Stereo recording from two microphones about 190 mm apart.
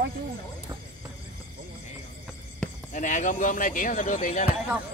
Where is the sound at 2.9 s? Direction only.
40° left (ahead or behind).